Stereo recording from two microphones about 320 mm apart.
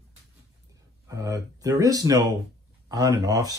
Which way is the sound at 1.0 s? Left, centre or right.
Centre.